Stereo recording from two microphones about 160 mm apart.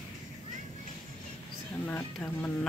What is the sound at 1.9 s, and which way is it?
Speech, 15° left (ahead or behind).